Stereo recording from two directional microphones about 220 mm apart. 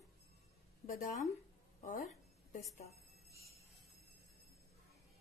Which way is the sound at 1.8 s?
35° left (ahead or behind).